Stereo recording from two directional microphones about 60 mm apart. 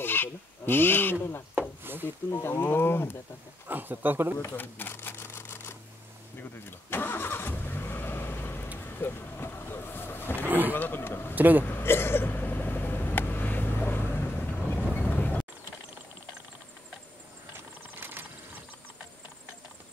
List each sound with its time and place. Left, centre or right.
0.0 s speech: left
1.8 s a sound: right
2.7 s a man's voice: left
3.6 s speech: right
4.4 s camera: left
6.9 s vehicle: left
10.4 s speech: right
10.7 s a man's voice: left
11.3 s speech: right
11.6 s hiccup: left
15.0 s a sound: left
18.0 s a sound: right